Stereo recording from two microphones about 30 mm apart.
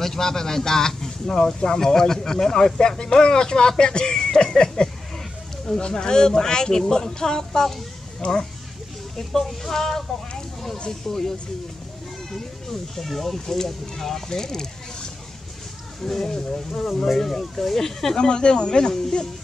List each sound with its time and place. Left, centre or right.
0.0 s speech: centre
4.4 s a sound: left
5.9 s speech: left
8.2 s speech: left
9.1 s speech: centre
12.9 s speech: centre
13.6 s speech: centre
18.1 s speech: left